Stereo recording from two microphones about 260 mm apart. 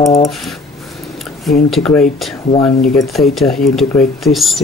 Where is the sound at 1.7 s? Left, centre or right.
Centre.